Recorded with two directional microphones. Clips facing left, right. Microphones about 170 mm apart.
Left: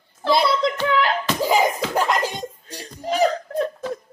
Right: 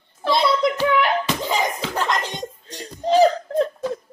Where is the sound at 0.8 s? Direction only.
20° right (ahead or behind).